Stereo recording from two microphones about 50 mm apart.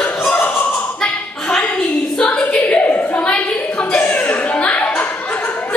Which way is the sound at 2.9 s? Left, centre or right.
Left.